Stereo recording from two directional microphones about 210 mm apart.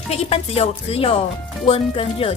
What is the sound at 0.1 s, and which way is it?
Speech, 30° left (ahead or behind).